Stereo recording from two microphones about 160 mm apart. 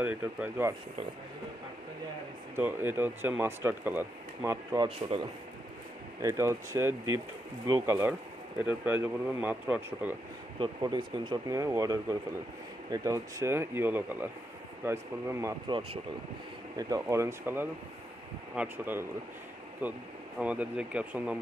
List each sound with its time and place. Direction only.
0.0 s speech: 10° right (ahead or behind)
2.5 s speech: 15° right (ahead or behind)
4.7 s speech: 30° right (ahead or behind)
6.2 s speech: 15° right (ahead or behind)
10.6 s speech: 25° right (ahead or behind)
16.7 s speech: 20° right (ahead or behind)